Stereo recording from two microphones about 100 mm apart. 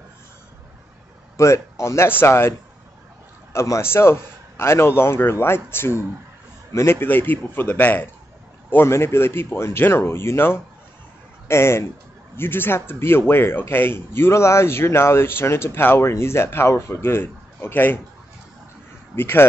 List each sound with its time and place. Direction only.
1.3 s a man's voice: 30° left (ahead or behind)
3.5 s a man's voice: 30° left (ahead or behind)
19.1 s a man's voice: 20° left (ahead or behind)